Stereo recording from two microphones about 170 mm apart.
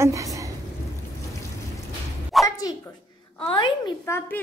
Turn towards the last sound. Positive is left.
turn(degrees=15)  # may be behind; listen again after turning